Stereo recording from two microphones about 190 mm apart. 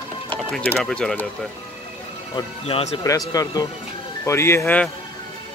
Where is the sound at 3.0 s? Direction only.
20° left (ahead or behind).